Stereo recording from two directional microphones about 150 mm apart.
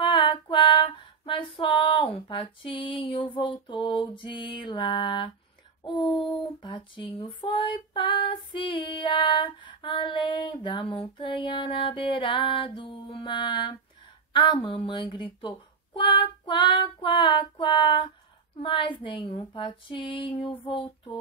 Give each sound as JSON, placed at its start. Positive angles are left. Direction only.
{"t": 0.0, "sound": "female singing", "side_deg": 35}
{"t": 5.9, "sound": "child singing", "side_deg": 30}
{"t": 6.3, "sound": "female singing", "side_deg": 35}